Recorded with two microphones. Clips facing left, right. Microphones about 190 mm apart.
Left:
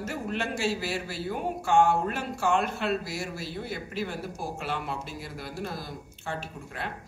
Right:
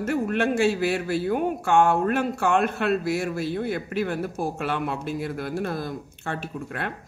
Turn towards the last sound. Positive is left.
turn(degrees=-60)  # may be behind; listen again after turning